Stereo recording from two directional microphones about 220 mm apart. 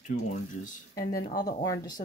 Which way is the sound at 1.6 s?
15° left (ahead or behind).